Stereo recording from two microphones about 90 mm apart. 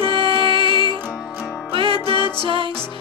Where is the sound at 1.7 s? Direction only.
90° right.